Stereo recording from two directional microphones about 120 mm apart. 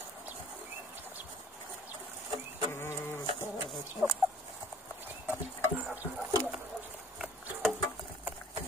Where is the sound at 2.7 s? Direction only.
20° left (ahead or behind).